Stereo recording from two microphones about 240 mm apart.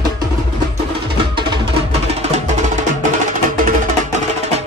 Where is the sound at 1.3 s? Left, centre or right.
Right.